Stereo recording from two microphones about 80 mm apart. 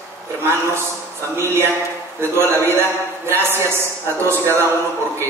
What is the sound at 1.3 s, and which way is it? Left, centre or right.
A man's voice, right.